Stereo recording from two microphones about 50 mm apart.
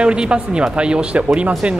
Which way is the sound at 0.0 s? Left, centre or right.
Centre.